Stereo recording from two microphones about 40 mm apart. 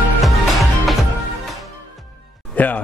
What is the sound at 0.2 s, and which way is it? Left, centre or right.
Music, centre.